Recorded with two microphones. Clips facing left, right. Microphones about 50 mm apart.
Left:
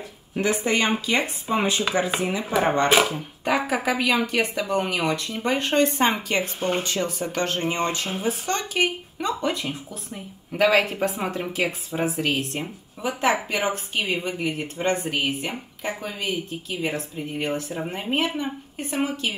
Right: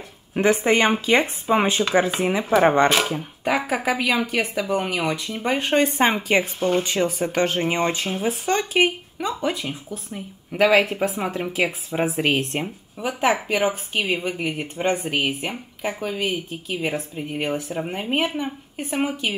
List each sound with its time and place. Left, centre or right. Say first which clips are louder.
0.3 s speech: right 5 dB; right
3.4 s speech: right 1 dB; centre
9.2 s speech: right 1 dB; centre
12.2 s speech: right 3 dB; right
12.6 s speech: right 1 dB; centre